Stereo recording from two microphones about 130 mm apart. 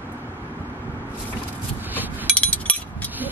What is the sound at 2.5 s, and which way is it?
Chink, 15° left (ahead or behind).